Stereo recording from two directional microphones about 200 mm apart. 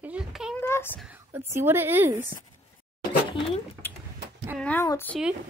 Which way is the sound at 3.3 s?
25° left (ahead or behind).